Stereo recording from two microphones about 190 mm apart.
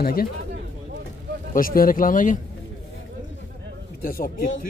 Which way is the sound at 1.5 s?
50° left (ahead or behind).